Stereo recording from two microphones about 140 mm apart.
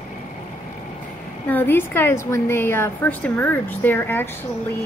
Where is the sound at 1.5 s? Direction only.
15° left (ahead or behind).